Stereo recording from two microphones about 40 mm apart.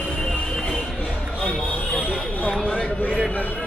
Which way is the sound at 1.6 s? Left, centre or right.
Left.